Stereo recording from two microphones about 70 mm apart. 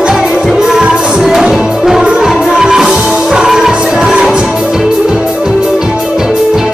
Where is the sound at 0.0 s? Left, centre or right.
Centre.